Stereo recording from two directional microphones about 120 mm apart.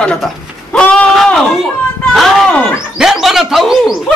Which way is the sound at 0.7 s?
10° left (ahead or behind).